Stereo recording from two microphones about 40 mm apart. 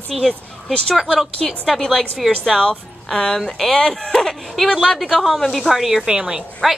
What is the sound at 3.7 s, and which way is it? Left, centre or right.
Speech, centre.